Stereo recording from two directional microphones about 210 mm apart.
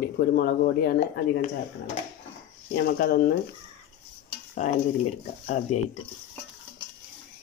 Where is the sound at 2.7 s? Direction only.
50° left (ahead or behind).